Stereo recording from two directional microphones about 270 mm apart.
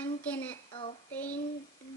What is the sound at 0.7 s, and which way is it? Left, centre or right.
Child singing, centre.